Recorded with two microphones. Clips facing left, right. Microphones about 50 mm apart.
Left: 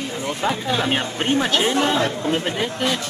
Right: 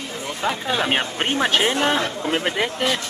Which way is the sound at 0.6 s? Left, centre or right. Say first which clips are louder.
Even; centre.